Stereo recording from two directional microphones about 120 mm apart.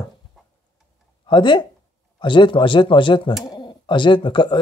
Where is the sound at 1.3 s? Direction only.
40° left (ahead or behind).